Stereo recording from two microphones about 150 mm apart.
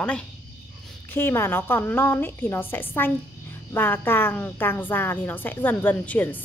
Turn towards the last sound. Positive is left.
turn(degrees=10)  # may be behind; listen again after turning